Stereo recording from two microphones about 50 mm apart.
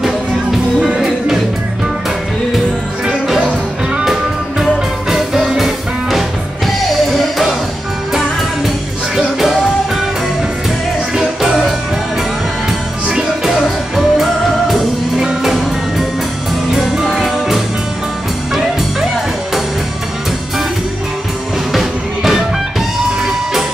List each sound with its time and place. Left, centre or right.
0.7 s music: centre
4.0 s music: centre
9.1 s music: centre
11.1 s music: centre
13.1 s music: centre
21.7 s music: centre